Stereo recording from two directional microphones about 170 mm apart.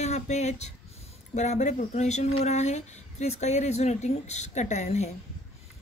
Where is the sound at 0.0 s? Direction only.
40° left (ahead or behind).